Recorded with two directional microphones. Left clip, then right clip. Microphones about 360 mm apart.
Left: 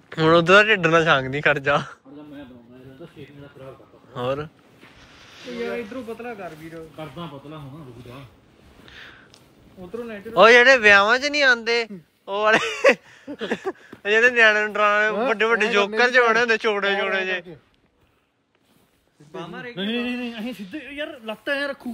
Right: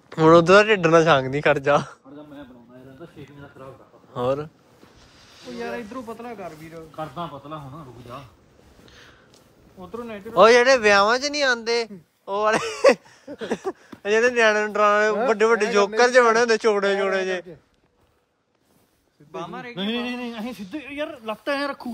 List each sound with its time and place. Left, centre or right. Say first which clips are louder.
0.1 s speech: right 1 dB; centre
4.1 s speech: right 2 dB; centre
5.2 s a sound: left 3 dB; centre
6.4 s a man's voice: left 1 dB; right
8.8 s a sound: left 7 dB; centre
9.9 s speech: even; centre
19.3 s a man's voice: right 1 dB; centre